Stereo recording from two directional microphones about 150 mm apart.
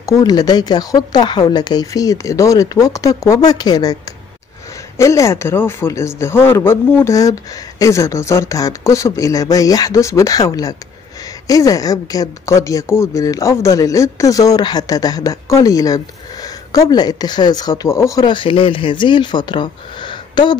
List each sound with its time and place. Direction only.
0.0 s speech: 25° left (ahead or behind)
4.9 s speech: 20° left (ahead or behind)